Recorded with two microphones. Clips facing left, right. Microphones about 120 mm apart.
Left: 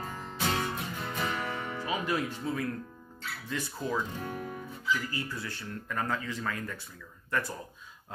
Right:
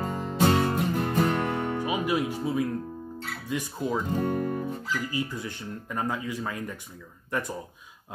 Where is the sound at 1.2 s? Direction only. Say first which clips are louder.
Right 7 dB; 60° right (ahead or behind).